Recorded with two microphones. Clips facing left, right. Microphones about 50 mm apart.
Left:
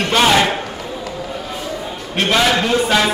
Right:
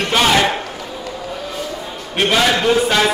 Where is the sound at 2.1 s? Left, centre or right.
Centre.